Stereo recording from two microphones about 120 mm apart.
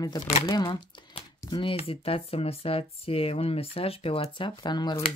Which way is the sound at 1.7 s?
55° left (ahead or behind).